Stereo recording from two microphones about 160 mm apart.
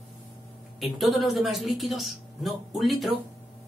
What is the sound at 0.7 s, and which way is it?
Speech, centre (ahead or behind).